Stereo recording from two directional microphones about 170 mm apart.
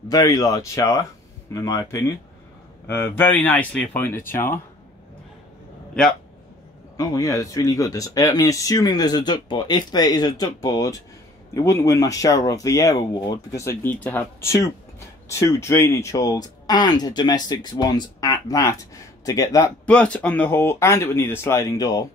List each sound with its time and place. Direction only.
0.1 s speech: 20° left (ahead or behind)
7.0 s speech: 20° left (ahead or behind)
19.9 s speech: 5° left (ahead or behind)